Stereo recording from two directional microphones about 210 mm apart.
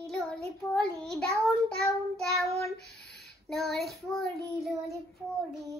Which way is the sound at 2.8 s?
50° left (ahead or behind).